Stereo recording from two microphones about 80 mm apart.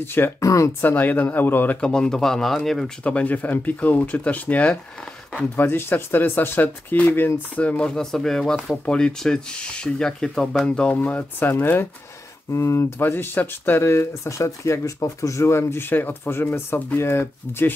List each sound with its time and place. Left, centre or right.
0.0 s speech: left
0.4 s speech: left
0.7 s speech: left
1.8 s speech: centre
3.0 s speech: centre
7.5 s speech: centre
11.0 s speech: left
12.5 s speech: left